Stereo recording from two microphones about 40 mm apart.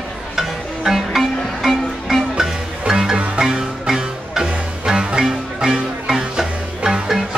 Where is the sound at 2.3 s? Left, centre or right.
Centre.